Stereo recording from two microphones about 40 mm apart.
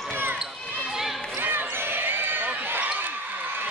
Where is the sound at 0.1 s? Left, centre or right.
Right.